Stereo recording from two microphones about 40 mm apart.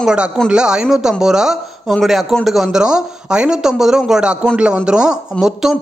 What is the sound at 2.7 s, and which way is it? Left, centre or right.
Speech, centre.